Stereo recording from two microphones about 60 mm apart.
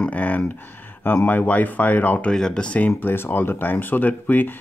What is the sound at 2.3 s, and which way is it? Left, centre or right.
Speech, centre.